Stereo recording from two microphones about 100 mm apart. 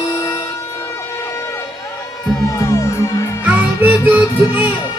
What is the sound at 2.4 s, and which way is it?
Music, 30° left (ahead or behind).